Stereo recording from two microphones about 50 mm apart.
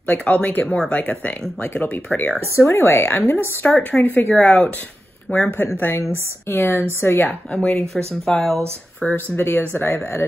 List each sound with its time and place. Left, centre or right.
0.0 s speech: left
2.5 s speech: left
4.3 s speech: left
5.9 s a woman's voice: left
6.5 s speech: left
7.2 s speech: centre
9.0 s speech: left
9.4 s speech: left